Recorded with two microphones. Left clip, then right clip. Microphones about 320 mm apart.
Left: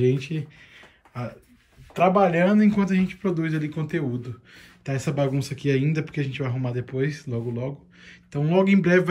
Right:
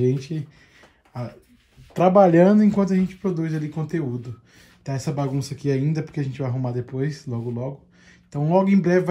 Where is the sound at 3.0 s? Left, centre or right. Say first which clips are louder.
Right 1 dB; right.